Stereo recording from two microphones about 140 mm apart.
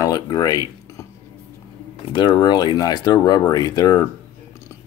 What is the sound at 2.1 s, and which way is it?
Speech, 35° left (ahead or behind).